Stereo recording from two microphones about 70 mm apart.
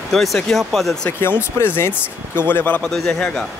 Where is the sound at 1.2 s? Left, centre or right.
Left.